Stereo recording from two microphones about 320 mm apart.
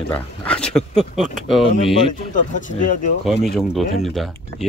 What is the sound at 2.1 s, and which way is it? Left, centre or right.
Speech, left.